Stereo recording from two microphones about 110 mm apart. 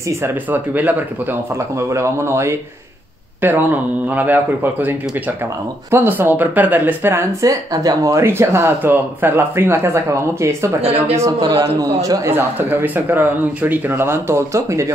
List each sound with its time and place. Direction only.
0.2 s speech: 15° right (ahead or behind)
7.7 s speech: 35° right (ahead or behind)
10.8 s speech: 65° right (ahead or behind)
11.1 s a man's voice: 30° right (ahead or behind)
12.3 s speech: 20° right (ahead or behind)